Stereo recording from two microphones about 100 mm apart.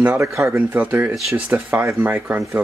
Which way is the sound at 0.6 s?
20° right (ahead or behind).